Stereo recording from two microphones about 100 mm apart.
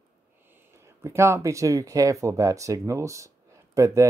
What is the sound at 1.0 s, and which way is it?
Speech, 25° right (ahead or behind).